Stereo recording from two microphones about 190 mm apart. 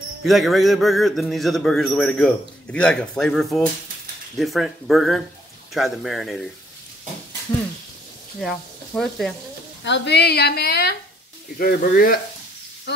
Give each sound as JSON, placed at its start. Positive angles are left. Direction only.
{"t": 0.2, "sound": "a man's voice", "side_deg": 0}
{"t": 8.4, "sound": "speech", "side_deg": 0}
{"t": 9.8, "sound": "a woman's voice", "side_deg": 65}